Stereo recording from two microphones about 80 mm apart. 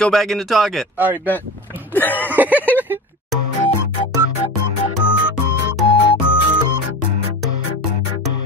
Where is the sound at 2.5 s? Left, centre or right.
Left.